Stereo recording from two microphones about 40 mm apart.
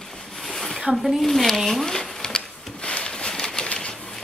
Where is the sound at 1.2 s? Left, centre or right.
Centre.